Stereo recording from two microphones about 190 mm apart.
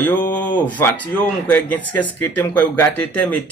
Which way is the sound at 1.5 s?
10° left (ahead or behind).